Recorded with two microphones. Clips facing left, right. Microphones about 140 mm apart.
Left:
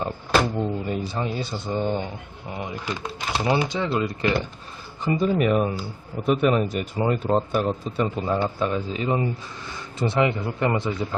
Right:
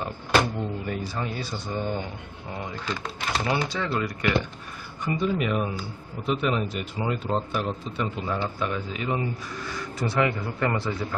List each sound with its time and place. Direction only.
0.6 s speech: 25° left (ahead or behind)
5.0 s speech: 35° left (ahead or behind); by 11.1 s 20° left (ahead or behind)